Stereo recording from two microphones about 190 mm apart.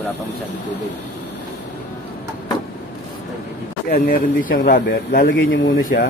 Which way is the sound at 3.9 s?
50° left (ahead or behind).